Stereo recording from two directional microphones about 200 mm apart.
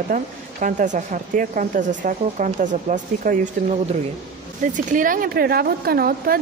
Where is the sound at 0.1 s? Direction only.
40° right (ahead or behind).